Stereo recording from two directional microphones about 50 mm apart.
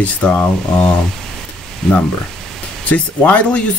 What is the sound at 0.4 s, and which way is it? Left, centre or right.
Speech, left.